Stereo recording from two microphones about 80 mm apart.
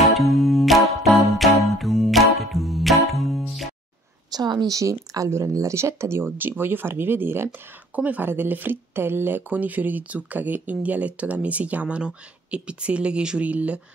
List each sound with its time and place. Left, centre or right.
0.2 s music: centre
4.3 s a woman's voice: right
4.7 s speech: right; by 13.7 s centre